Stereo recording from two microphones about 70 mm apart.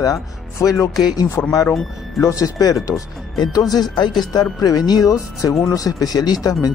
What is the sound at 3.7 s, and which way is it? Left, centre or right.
Speech, left.